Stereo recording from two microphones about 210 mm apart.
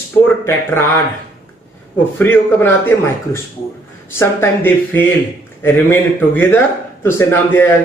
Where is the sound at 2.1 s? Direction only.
10° left (ahead or behind).